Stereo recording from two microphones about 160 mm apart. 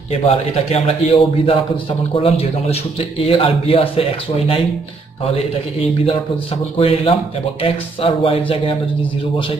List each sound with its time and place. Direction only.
0.3 s a man's voice: 40° left (ahead or behind)
6.8 s a man's voice: 35° left (ahead or behind)